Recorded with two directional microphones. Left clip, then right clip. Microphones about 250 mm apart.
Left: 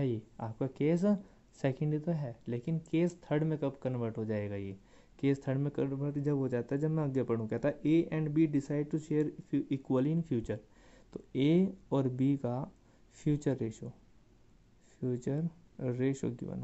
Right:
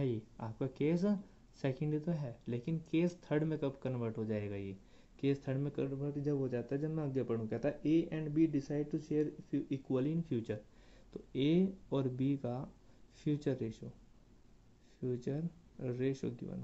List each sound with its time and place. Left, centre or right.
0.0 s speech: left
15.0 s speech: left